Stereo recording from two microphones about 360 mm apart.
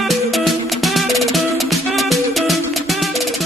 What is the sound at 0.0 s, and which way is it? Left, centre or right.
Music, centre.